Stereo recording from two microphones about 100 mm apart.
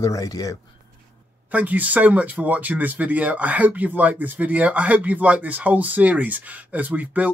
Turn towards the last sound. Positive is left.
turn(degrees=-15)  # may be behind; listen again after turning